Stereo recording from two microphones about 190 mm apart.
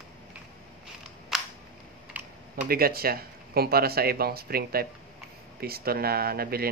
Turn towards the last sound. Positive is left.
turn(degrees=-55)  # may be behind; listen again after turning